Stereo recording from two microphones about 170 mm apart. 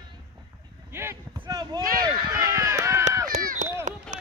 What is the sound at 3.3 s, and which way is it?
Chop, 50° right (ahead or behind).